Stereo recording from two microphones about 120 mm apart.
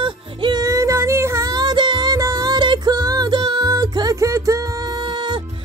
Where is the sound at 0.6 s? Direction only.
25° right (ahead or behind).